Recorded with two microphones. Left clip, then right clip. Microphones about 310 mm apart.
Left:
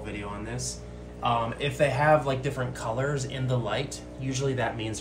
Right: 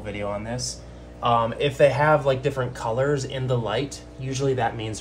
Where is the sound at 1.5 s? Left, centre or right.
Right.